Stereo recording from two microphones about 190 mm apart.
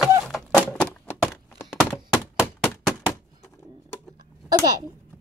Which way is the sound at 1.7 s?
5° right (ahead or behind).